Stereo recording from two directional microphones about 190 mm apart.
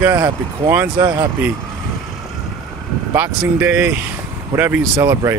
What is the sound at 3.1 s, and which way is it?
Speech, 10° right (ahead or behind).